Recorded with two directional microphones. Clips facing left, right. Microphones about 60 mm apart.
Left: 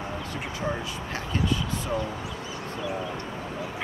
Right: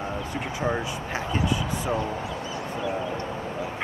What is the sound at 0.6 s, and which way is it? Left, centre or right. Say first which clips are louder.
Speech: right 4 dB; centre.